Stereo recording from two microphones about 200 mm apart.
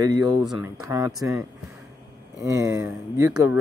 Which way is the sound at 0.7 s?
15° right (ahead or behind).